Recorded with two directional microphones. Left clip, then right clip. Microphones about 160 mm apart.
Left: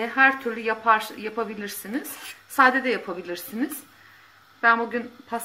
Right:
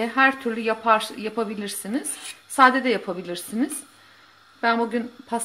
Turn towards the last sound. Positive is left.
turn(degrees=-60)  # may be behind; listen again after turning